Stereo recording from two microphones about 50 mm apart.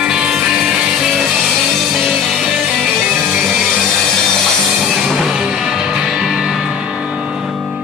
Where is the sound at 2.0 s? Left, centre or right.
Centre.